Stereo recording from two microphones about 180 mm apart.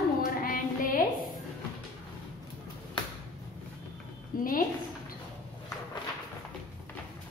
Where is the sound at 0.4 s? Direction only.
50° left (ahead or behind).